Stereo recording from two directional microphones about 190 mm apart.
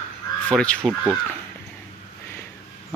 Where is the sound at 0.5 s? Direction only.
5° left (ahead or behind).